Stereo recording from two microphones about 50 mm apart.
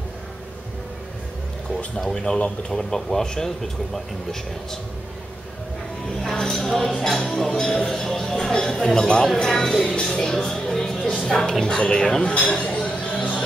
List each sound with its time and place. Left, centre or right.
2.0 s speech: centre
6.2 s speech: centre
9.9 s music: centre
11.2 s speech: centre; by 13.4 s left